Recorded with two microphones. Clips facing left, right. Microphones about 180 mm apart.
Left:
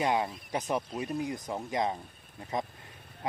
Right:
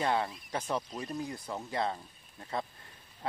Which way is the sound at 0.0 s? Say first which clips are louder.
Left 2 dB; 15° left (ahead or behind).